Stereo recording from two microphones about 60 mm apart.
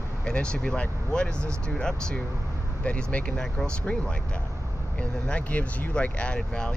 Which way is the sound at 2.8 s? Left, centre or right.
Left.